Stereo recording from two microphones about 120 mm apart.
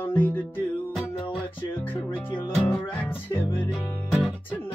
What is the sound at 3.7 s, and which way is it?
Music, centre (ahead or behind).